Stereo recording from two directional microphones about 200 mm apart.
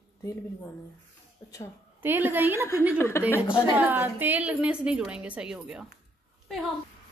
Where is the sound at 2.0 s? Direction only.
10° right (ahead or behind).